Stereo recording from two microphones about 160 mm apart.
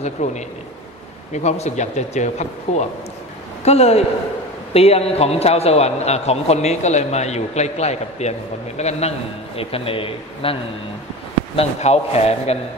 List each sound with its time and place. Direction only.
0.0 s a man's voice: 45° left (ahead or behind)